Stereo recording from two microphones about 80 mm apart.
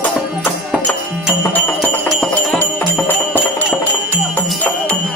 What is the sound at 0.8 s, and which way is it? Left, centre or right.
Music, left.